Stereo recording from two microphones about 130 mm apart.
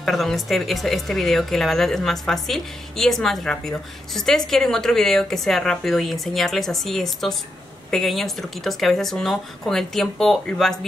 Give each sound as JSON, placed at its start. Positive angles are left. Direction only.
{"t": 0.0, "sound": "speech", "side_deg": 0}